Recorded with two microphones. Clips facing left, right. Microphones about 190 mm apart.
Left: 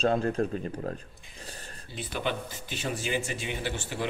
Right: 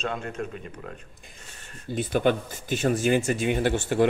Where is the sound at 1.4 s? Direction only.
35° left (ahead or behind).